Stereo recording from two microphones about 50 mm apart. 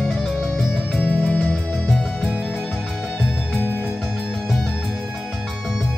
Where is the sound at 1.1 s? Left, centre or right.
Left.